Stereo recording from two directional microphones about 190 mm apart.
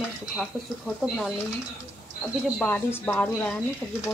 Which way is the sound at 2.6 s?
10° left (ahead or behind).